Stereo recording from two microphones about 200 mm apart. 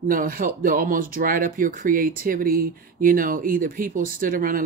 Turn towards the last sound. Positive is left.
turn(degrees=-45)  # may be behind; listen again after turning